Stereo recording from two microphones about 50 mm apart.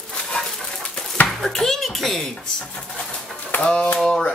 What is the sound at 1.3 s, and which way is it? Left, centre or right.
Speech, centre.